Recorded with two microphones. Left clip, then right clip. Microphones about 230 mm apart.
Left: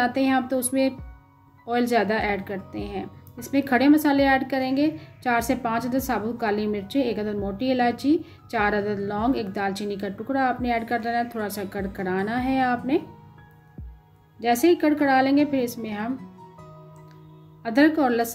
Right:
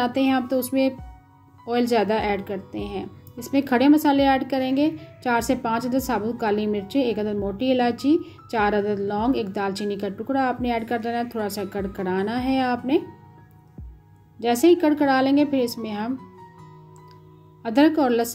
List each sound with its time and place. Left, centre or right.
0.0 s a woman's voice: centre
14.4 s a woman's voice: centre
17.6 s a woman's voice: centre